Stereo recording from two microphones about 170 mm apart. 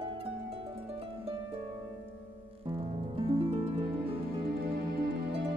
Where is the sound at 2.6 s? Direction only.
30° right (ahead or behind).